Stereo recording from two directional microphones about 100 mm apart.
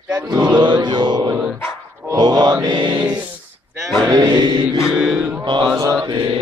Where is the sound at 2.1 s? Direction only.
45° right (ahead or behind).